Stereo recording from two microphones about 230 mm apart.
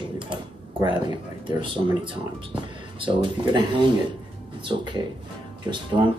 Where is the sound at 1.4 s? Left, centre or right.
Right.